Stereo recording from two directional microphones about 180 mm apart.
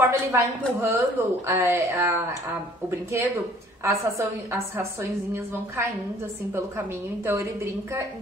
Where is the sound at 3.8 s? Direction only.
15° right (ahead or behind).